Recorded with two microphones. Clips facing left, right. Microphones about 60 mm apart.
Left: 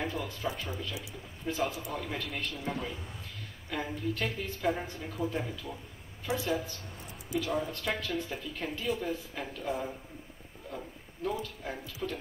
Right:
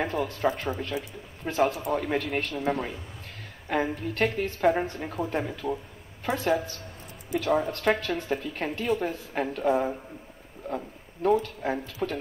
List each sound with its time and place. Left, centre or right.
0.0 s speech: right
10.6 s a sound: right
11.2 s speech: right